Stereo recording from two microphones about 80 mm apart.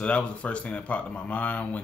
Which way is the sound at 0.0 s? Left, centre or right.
Centre.